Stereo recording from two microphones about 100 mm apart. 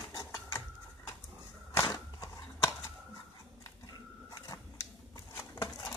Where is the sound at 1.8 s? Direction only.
40° left (ahead or behind).